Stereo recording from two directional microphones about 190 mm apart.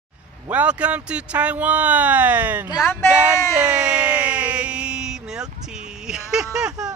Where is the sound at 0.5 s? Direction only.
5° right (ahead or behind).